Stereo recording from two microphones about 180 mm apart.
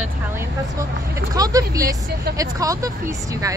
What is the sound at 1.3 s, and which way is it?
Speech, 20° right (ahead or behind).